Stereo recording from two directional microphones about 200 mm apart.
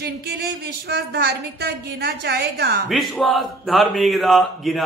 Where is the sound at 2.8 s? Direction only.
Centre (ahead or behind).